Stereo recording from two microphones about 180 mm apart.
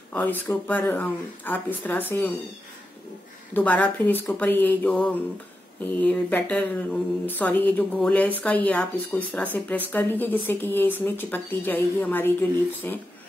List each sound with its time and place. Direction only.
0.1 s speech: 10° left (ahead or behind)
3.5 s speech: 10° left (ahead or behind)